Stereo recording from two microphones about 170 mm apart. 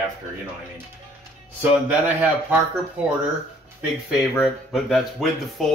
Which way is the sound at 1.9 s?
10° right (ahead or behind).